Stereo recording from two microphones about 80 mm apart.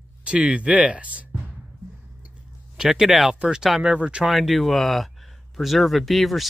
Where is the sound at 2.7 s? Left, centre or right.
Centre.